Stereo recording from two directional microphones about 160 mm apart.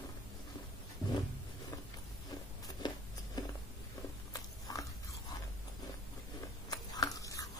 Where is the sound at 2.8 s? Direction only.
25° left (ahead or behind).